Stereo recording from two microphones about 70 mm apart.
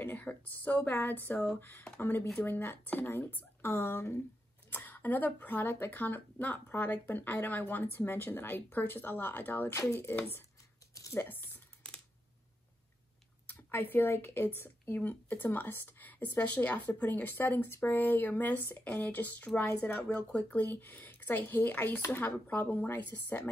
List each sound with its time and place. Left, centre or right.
0.0 s speech: left
4.6 s speech: left
9.7 s speech: left
11.1 s speech: left
11.8 s typing: centre
13.5 s speech: left